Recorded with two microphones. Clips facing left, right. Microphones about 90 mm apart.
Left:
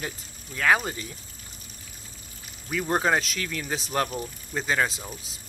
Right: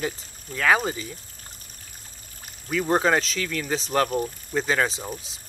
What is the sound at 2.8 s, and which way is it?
Speech, centre (ahead or behind).